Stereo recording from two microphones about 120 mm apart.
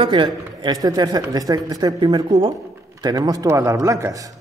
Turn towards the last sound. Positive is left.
turn(degrees=-25)  # may be behind; listen again after turning